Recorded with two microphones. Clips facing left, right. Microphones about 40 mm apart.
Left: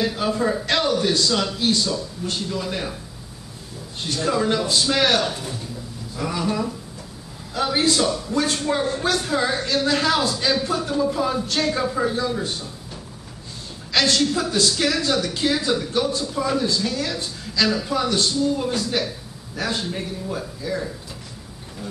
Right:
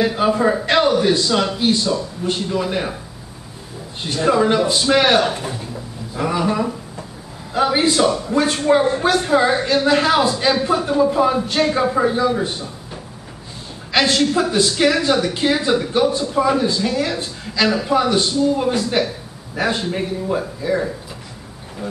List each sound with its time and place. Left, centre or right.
0.0 s speech: right
4.0 s speech: right